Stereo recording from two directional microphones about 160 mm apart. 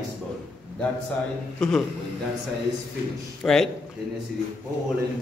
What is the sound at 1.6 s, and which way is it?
Speech, 5° left (ahead or behind).